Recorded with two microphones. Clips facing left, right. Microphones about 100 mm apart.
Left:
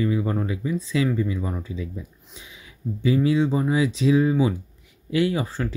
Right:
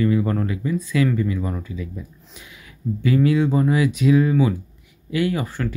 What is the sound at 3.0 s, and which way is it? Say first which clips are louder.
Speech: right 2 dB; 20° left (ahead or behind).